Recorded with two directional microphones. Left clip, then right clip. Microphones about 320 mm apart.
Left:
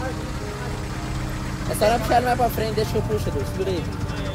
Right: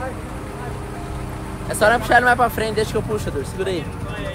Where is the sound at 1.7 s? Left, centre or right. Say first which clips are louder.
Right 4 dB; centre.